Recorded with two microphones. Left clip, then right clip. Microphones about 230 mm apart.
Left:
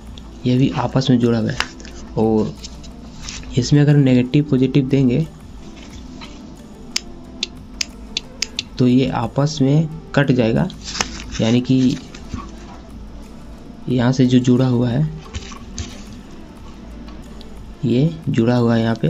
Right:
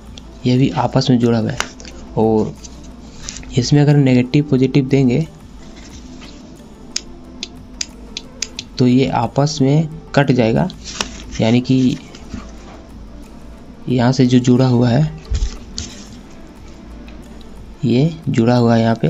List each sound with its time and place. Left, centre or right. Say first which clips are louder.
0.4 s speech: right 3 dB; centre
3.5 s speech: right 2 dB; centre
7.4 s a sound: left 2 dB; centre
8.7 s speech: right 3 dB; centre
13.8 s speech: right 2 dB; centre
17.8 s speech: right 2 dB; centre